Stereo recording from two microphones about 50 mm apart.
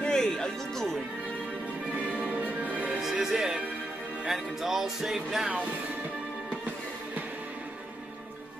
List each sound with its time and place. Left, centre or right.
0.0 s music: centre
2.0 s music: right
3.0 s music: centre
4.3 s speech: centre